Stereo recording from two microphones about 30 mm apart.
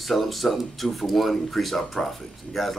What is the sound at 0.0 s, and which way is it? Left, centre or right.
Speech, centre.